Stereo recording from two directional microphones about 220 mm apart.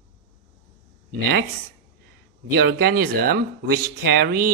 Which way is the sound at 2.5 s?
45° right (ahead or behind).